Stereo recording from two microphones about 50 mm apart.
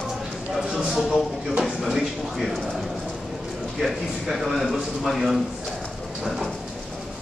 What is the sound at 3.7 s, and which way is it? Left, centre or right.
A man's voice, centre.